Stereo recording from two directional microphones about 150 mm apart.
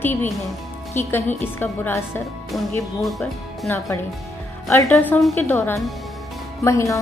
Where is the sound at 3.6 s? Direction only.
20° left (ahead or behind).